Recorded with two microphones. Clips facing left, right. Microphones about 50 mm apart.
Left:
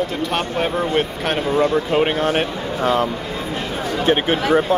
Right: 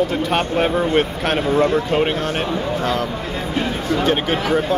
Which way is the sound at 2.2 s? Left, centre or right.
Left.